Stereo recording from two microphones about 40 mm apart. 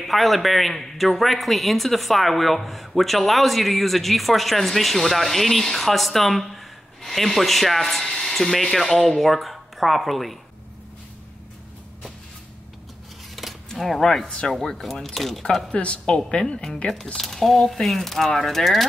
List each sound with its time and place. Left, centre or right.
0.0 s speech: centre
13.4 s a sound: centre
13.7 s speech: centre
14.2 s speech: centre
15.7 s speech: left
17.2 s speech: centre